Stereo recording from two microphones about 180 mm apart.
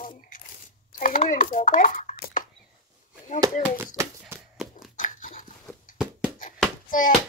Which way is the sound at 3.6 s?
10° right (ahead or behind).